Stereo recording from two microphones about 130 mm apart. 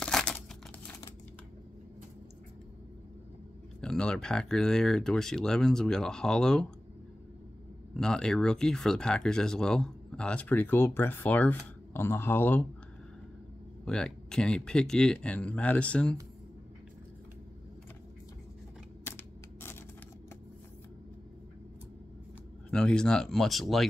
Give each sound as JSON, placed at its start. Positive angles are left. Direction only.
{"t": 0.0, "sound": "crumpling", "side_deg": 5}
{"t": 3.8, "sound": "speech", "side_deg": 5}
{"t": 7.9, "sound": "speech", "side_deg": 5}
{"t": 13.8, "sound": "speech", "side_deg": 5}
{"t": 19.0, "sound": "a sound", "side_deg": 20}
{"t": 22.7, "sound": "speech", "side_deg": 5}